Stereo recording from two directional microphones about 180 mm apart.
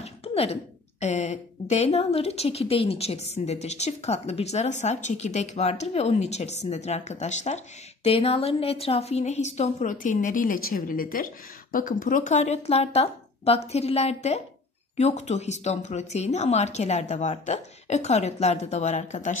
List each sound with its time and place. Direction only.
0.0 s a woman's voice: 35° left (ahead or behind)